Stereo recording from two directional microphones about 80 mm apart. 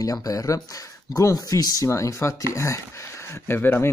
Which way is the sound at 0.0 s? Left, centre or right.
Left.